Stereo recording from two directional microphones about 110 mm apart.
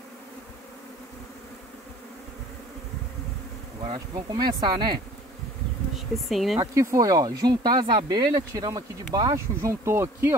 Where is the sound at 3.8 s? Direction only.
45° right (ahead or behind).